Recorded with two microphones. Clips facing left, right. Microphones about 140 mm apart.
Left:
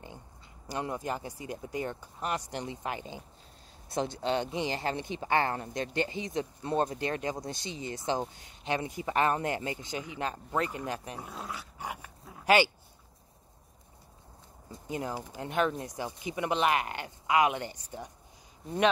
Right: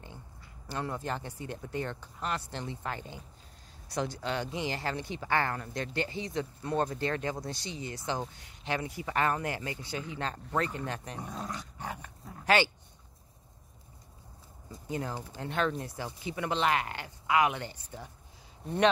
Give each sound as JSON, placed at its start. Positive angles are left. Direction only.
{"t": 0.7, "sound": "speech", "side_deg": 15}
{"t": 14.9, "sound": "speech", "side_deg": 15}